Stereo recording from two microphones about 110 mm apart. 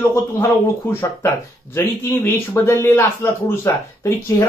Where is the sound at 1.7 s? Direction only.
20° left (ahead or behind).